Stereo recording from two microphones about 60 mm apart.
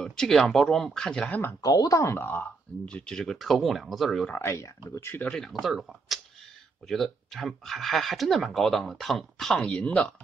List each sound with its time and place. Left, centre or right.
0.0 s speech: centre
1.6 s speech: left
2.1 s speech: left
2.8 s speech: centre
4.5 s speech: left
5.3 s speech: centre